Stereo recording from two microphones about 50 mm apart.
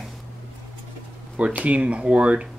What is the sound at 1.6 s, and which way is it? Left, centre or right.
Speech, right.